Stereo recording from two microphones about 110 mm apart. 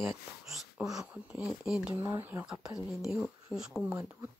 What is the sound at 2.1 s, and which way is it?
Speech, 20° right (ahead or behind).